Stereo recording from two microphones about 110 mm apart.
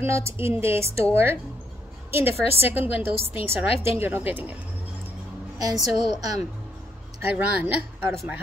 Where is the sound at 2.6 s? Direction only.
20° right (ahead or behind).